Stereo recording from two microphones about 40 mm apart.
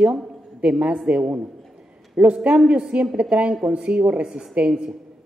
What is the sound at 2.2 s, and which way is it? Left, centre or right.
Speech, right.